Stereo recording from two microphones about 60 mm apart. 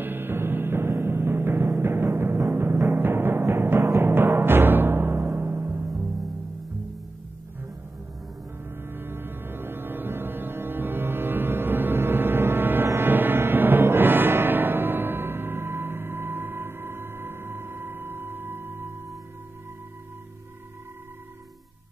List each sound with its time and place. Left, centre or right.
0.0 s music: right
4.0 s timpani: right
8.8 s music: right